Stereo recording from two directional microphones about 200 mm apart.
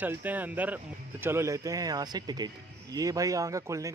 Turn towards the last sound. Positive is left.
turn(degrees=-15)  # may be behind; listen again after turning